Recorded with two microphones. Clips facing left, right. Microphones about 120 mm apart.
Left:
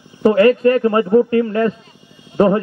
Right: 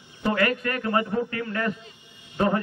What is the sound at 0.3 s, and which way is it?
A man's voice, 30° left (ahead or behind).